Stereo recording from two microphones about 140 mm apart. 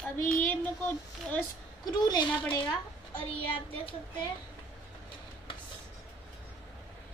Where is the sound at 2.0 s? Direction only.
30° left (ahead or behind).